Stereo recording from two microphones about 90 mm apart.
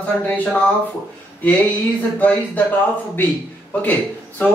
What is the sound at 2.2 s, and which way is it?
A man's voice, 20° left (ahead or behind).